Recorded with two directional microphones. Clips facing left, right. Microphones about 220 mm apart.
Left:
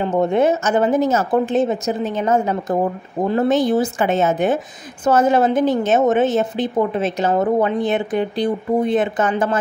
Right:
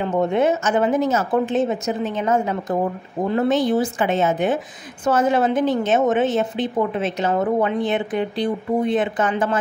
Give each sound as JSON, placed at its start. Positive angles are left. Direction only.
{"t": 0.0, "sound": "a woman's voice", "side_deg": 40}